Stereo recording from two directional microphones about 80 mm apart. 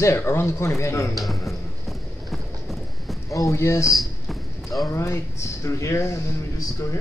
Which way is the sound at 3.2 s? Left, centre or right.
Left.